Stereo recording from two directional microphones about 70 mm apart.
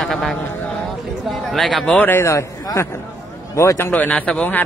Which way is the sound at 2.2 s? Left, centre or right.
Left.